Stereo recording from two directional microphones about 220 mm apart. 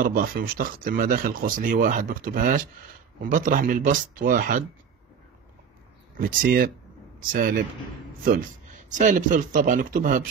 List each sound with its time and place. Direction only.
0.0 s speech: 40° right (ahead or behind)
6.1 s speech: 40° right (ahead or behind)